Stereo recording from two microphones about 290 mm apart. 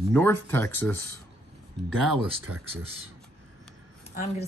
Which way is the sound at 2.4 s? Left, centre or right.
Right.